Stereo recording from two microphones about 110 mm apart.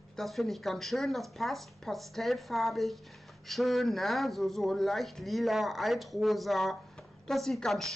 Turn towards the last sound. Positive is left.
turn(degrees=0)  # may be behind; listen again after turning